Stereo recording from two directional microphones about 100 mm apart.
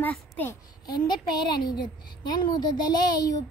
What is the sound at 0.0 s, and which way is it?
Speech, 20° left (ahead or behind).